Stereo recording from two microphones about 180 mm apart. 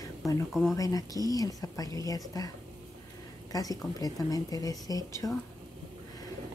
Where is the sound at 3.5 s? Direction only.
20° left (ahead or behind).